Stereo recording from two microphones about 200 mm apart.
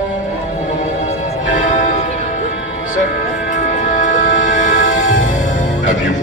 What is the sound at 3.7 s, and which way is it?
Music, 40° left (ahead or behind).